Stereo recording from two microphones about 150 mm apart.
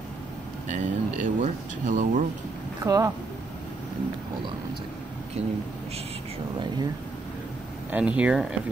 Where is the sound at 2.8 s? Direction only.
20° right (ahead or behind).